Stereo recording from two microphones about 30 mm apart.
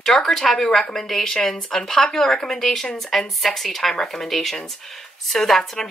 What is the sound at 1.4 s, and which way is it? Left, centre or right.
Speech, left.